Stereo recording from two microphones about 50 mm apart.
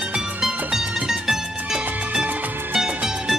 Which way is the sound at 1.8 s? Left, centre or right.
Right.